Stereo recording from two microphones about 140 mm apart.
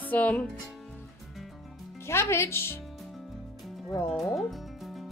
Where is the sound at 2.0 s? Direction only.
20° left (ahead or behind).